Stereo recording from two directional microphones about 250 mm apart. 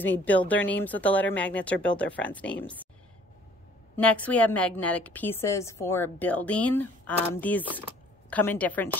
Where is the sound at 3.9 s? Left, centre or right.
Centre.